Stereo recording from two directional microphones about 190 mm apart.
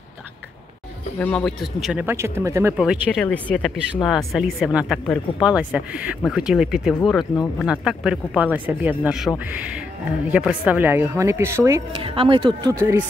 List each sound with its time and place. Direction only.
1.2 s speech: 5° left (ahead or behind); by 2.7 s 15° right (ahead or behind)
2.8 s speech: centre (ahead or behind)
10.3 s speech: 5° right (ahead or behind)
12.0 s speech: 25° right (ahead or behind)